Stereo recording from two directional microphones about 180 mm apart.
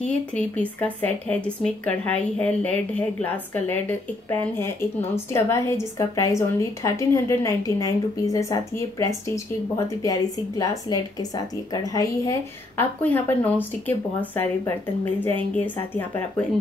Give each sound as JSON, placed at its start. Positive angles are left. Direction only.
{"t": 0.3, "sound": "a woman's voice", "side_deg": 5}